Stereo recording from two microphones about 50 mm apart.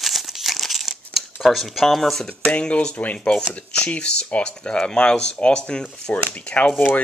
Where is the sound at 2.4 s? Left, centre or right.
Left.